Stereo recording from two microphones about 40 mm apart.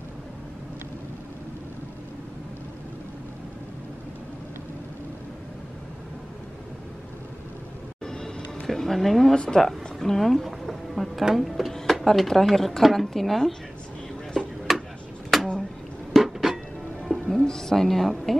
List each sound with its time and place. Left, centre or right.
8.0 s music: centre
8.6 s a woman's voice: centre
9.3 s speech: centre
10.7 s music: centre
11.3 s a woman's voice: centre
14.7 s a sound: centre
16.2 s a sound: centre
17.0 s music: centre
17.4 s a woman's voice: centre